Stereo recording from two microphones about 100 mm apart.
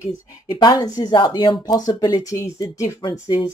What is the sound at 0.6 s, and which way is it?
Speech, 40° left (ahead or behind).